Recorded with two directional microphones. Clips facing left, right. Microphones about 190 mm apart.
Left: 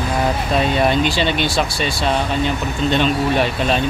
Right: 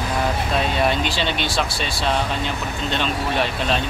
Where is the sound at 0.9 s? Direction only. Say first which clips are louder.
Left 5 dB; centre (ahead or behind).